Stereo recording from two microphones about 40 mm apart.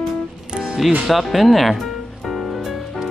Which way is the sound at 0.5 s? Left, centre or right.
Right.